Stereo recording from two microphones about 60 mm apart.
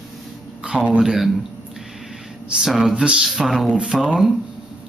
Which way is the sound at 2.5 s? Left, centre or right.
Centre.